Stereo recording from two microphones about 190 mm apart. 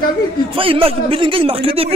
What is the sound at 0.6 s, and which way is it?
Speech, 30° right (ahead or behind).